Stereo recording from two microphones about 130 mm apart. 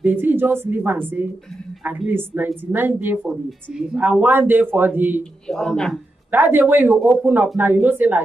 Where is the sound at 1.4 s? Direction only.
5° left (ahead or behind).